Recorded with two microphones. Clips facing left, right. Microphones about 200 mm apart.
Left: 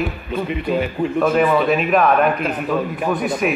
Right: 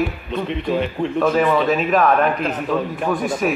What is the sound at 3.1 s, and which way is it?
Speech, 15° left (ahead or behind).